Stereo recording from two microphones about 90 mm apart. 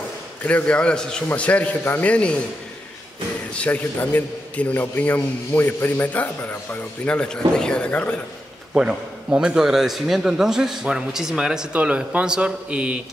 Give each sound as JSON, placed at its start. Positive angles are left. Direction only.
{"t": 0.4, "sound": "a man's voice", "side_deg": 20}
{"t": 3.5, "sound": "a man's voice", "side_deg": 15}
{"t": 8.7, "sound": "a man's voice", "side_deg": -10}